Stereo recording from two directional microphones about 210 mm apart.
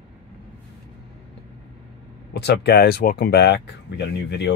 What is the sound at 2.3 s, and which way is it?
Speech, 50° left (ahead or behind).